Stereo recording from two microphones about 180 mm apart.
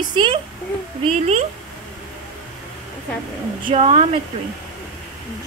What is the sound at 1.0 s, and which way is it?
Speech, 35° right (ahead or behind).